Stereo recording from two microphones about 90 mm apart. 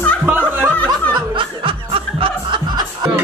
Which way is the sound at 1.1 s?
75° right (ahead or behind).